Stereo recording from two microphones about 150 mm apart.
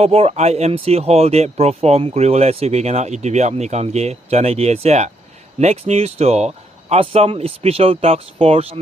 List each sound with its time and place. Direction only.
0.0 s speech: 45° right (ahead or behind)